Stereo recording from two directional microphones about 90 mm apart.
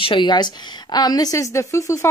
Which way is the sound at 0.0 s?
65° left (ahead or behind).